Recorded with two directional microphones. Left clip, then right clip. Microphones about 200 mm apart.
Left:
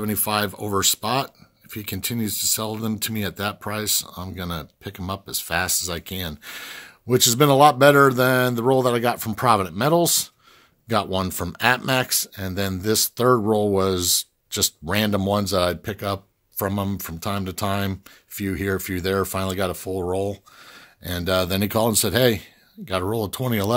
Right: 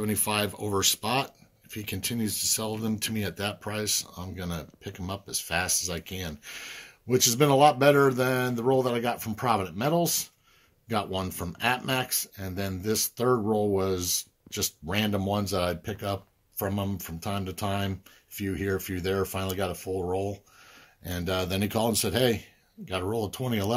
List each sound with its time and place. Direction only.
0.0 s speech: 40° left (ahead or behind)